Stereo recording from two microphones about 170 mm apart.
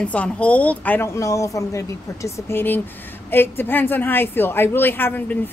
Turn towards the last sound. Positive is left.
turn(degrees=10)  # may be behind; listen again after turning